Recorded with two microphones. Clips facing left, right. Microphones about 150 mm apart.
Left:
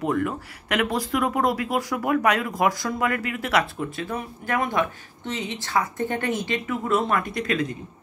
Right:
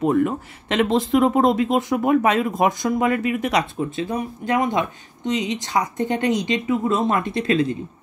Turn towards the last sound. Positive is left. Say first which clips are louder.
# right 4 dB
turn(degrees=-25)  # may be behind; listen again after turning